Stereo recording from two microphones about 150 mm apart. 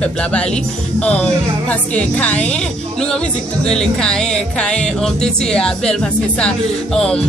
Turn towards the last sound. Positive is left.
turn(degrees=5)  # may be behind; listen again after turning